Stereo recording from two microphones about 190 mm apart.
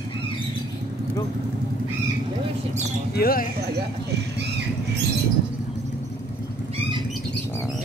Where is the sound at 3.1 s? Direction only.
50° left (ahead or behind).